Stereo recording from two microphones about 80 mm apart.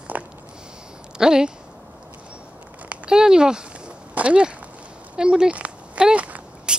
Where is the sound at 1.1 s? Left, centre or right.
Centre.